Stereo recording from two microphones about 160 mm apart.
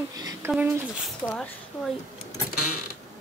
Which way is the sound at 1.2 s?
10° left (ahead or behind).